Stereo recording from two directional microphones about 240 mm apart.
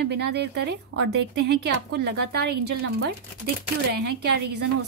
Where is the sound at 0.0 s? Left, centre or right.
Right.